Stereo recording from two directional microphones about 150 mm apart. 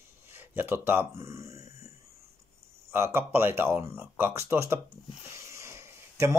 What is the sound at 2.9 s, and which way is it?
Speech, 15° right (ahead or behind).